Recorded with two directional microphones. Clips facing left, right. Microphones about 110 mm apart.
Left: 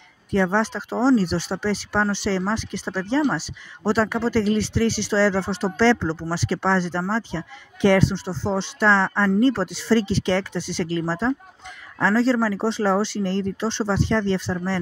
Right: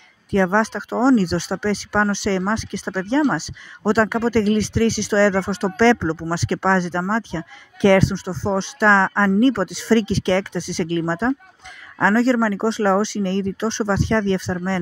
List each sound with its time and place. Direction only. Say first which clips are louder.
0.3 s speech: right 3 dB; 65° right (ahead or behind)
12.0 s speech: right 3 dB; 80° right